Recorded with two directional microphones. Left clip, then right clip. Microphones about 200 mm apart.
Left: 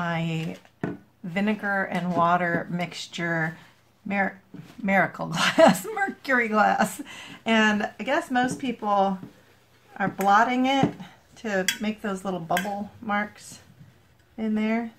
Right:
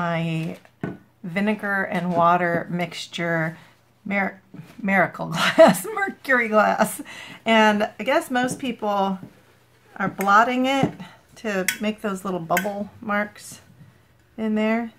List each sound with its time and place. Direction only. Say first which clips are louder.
0.0 s speech: right 3 dB; 10° right (ahead or behind)
10.2 s speech: right 3 dB; 20° right (ahead or behind)